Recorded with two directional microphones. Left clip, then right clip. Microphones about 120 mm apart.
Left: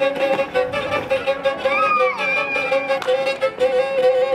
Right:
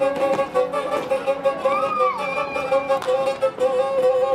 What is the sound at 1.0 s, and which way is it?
Music, 15° left (ahead or behind).